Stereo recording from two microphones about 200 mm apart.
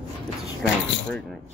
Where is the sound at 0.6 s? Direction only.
5° left (ahead or behind).